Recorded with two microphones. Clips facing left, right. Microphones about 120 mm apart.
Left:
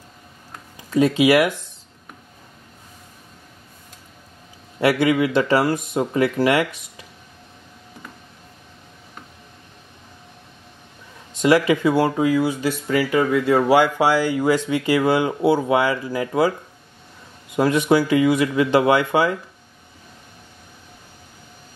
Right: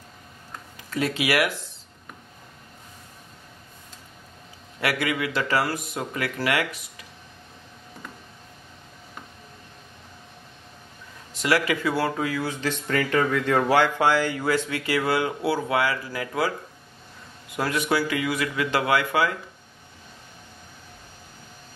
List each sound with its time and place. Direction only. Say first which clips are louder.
0.8 s speech: left 9 dB; 20° left (ahead or behind)
4.7 s speech: left 9 dB; 25° left (ahead or behind)
11.4 s speech: left 7 dB; 20° left (ahead or behind)
17.6 s speech: left 7 dB; 25° left (ahead or behind)